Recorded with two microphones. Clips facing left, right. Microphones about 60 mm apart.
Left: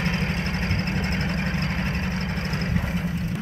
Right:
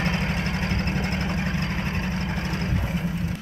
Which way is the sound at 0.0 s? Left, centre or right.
Right.